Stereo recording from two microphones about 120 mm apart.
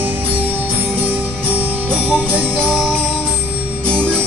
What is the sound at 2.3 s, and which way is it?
Music, 15° right (ahead or behind).